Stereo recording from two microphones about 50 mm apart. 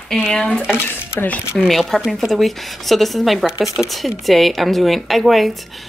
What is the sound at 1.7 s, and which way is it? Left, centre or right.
A woman's voice, centre.